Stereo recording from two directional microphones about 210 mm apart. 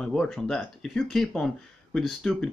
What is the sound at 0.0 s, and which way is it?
Speech, 5° left (ahead or behind).